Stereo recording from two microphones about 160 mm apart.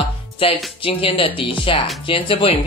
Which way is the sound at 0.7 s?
35° left (ahead or behind).